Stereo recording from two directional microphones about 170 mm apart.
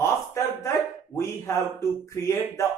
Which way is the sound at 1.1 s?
15° left (ahead or behind).